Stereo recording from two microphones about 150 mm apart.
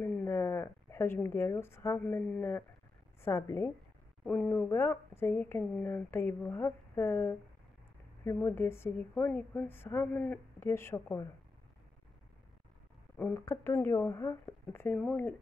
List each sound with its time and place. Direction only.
0.0 s a woman's voice: 15° left (ahead or behind)
13.2 s a woman's voice: 15° left (ahead or behind)